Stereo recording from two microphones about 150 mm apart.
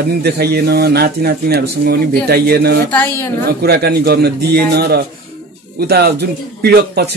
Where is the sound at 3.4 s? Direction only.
90° right.